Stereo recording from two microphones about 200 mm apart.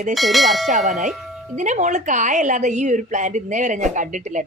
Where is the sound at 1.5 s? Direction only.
40° right (ahead or behind).